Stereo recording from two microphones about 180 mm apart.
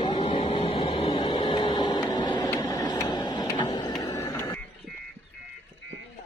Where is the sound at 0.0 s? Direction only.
30° left (ahead or behind).